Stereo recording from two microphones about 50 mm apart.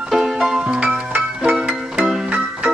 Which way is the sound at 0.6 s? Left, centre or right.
Centre.